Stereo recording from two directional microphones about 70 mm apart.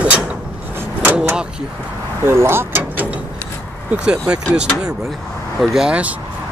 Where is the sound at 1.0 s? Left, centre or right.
Right.